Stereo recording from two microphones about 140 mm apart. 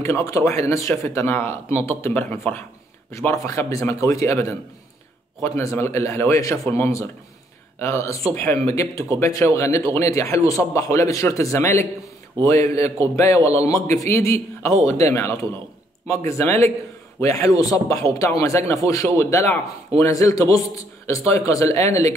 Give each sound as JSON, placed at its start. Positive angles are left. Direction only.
{"t": 0.0, "sound": "speech", "side_deg": 20}